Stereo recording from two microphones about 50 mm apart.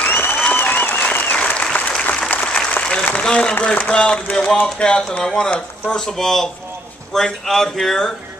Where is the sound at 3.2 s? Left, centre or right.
Centre.